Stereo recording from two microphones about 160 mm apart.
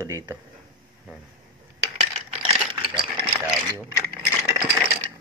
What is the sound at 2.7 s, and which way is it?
Engine, 30° right (ahead or behind).